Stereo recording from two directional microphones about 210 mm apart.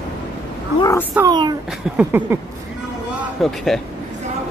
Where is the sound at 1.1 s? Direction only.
15° right (ahead or behind).